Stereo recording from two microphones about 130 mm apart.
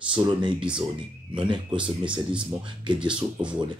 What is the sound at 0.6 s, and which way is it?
Speech, 10° right (ahead or behind).